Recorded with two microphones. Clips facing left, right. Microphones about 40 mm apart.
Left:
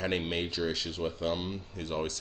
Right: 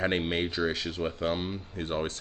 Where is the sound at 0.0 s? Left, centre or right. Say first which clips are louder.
Right 3 dB; right.